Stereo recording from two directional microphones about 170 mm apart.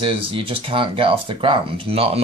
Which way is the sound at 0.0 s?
30° right (ahead or behind).